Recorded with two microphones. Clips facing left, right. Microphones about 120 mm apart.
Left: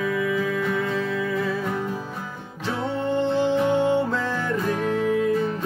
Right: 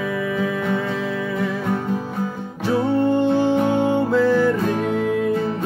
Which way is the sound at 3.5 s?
45° right (ahead or behind).